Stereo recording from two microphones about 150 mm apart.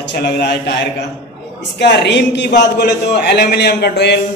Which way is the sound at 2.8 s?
90° left.